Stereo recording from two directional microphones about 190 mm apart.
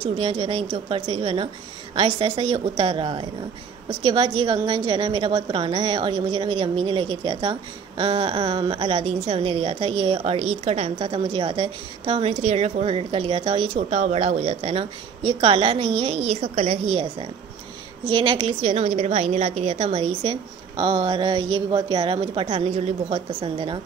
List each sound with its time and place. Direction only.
0.0 s a woman's voice: 25° right (ahead or behind)